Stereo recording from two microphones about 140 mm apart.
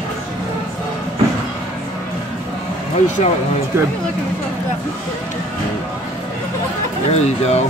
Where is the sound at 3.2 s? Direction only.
55° left (ahead or behind).